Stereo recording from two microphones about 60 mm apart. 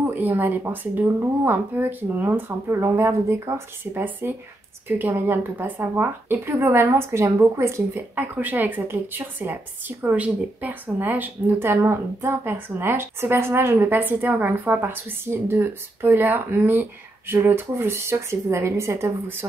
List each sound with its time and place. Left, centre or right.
0.0 s speech: right
2.7 s speech: right
8.2 s speech: right
13.9 s speech: right